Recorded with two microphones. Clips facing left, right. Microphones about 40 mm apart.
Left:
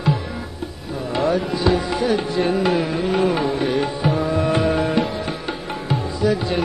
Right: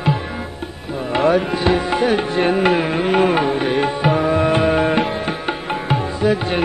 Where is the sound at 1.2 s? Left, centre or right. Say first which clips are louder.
Right 4 dB; right.